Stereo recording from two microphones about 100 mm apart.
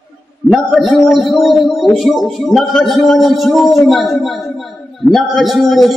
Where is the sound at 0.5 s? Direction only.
Centre (ahead or behind).